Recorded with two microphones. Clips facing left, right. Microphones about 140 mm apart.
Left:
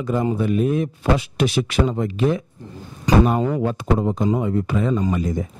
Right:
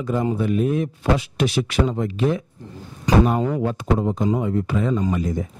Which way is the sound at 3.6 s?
20° left (ahead or behind).